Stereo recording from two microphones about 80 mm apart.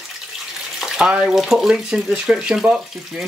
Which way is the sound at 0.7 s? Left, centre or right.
Centre.